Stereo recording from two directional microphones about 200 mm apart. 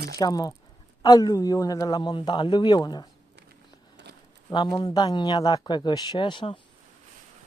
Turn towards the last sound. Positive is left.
turn(degrees=25)  # may be behind; listen again after turning